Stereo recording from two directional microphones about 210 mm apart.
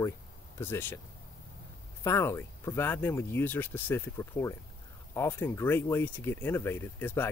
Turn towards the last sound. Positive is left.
turn(degrees=10)  # may be behind; listen again after turning